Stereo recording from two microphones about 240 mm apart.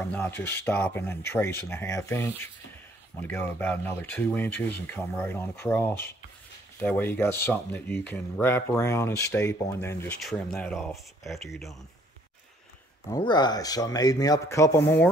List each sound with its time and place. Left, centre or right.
0.0 s speech: centre
13.1 s speech: centre